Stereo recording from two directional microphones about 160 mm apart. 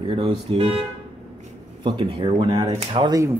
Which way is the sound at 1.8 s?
30° right (ahead or behind).